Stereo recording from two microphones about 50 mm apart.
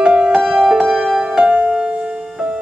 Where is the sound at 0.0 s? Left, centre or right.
Centre.